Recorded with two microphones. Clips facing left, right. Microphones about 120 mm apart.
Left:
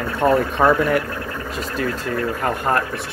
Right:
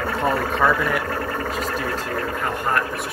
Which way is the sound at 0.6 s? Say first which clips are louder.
Left 3 dB; 25° left (ahead or behind).